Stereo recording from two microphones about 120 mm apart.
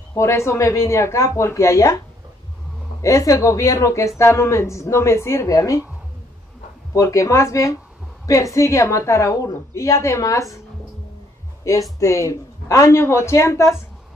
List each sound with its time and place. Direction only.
0.1 s a woman's voice: 25° left (ahead or behind)
3.0 s a woman's voice: 30° left (ahead or behind)
6.9 s a woman's voice: 25° left (ahead or behind)
11.6 s a woman's voice: 25° left (ahead or behind)